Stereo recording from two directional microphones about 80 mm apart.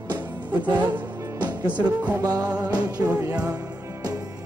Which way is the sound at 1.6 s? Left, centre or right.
Centre.